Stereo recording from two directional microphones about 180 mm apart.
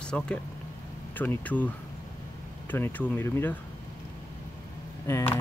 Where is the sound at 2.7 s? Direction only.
10° left (ahead or behind).